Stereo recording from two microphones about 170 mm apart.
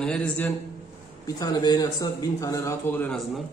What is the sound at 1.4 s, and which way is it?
Speech, 25° left (ahead or behind).